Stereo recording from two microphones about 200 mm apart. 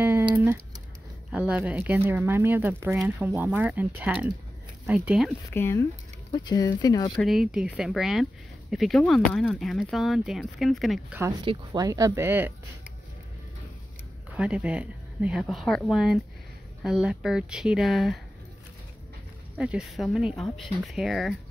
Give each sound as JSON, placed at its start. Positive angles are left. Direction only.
{"t": 0.0, "sound": "a sound", "side_deg": -10}
{"t": 1.3, "sound": "speech", "side_deg": -5}
{"t": 5.5, "sound": "speech", "side_deg": 10}
{"t": 7.2, "sound": "speech", "side_deg": 0}
{"t": 11.4, "sound": "speech", "side_deg": -20}
{"t": 14.3, "sound": "speech", "side_deg": -5}
{"t": 19.5, "sound": "speech", "side_deg": -5}